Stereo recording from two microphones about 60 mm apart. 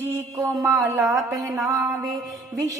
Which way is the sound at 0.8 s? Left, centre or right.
Right.